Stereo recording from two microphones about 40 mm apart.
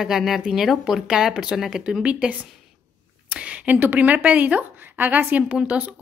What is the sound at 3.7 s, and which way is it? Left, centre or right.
Speech, right.